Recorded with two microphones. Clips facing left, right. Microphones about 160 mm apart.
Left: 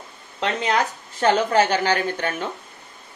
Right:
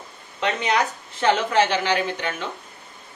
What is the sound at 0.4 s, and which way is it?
A woman's voice, 40° left (ahead or behind).